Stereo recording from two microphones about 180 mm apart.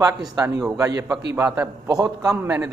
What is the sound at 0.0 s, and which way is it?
A man's voice, 20° right (ahead or behind).